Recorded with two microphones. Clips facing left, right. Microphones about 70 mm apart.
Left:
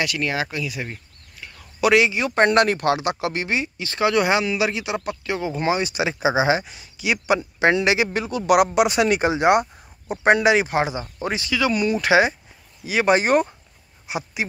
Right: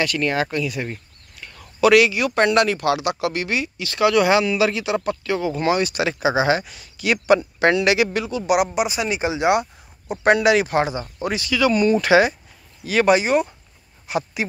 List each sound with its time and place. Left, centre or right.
0.0 s speech: centre
1.4 s speech: centre
8.3 s speech: left
8.7 s speech: left
10.2 s speech: left
10.7 s speech: centre
13.1 s speech: left
14.0 s a sound: centre